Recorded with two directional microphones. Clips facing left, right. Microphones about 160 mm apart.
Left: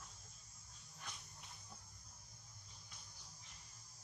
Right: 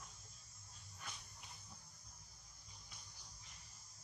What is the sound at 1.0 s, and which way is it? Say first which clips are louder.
Music: even; centre (ahead or behind).